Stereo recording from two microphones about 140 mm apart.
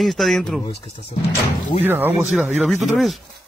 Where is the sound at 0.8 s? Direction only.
45° left (ahead or behind).